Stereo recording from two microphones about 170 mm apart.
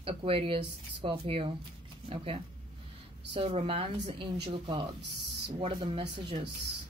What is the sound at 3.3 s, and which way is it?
Speech, 30° right (ahead or behind).